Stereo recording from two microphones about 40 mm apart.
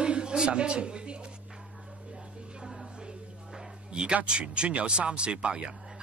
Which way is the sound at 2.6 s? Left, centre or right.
Centre.